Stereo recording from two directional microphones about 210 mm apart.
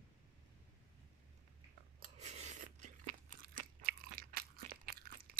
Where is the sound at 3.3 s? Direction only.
45° right (ahead or behind).